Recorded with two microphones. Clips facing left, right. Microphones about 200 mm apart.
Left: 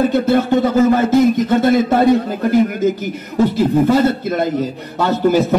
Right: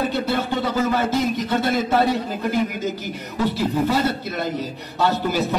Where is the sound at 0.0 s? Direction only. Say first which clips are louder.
Left 8 dB; 45° left (ahead or behind).